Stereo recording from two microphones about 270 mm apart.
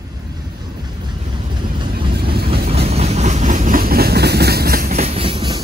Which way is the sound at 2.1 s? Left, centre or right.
Right.